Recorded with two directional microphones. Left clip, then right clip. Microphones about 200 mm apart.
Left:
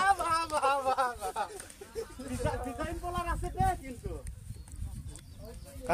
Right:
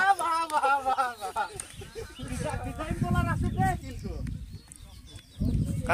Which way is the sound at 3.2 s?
15° left (ahead or behind).